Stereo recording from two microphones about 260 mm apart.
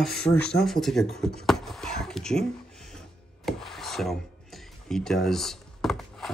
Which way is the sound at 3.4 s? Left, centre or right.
Centre.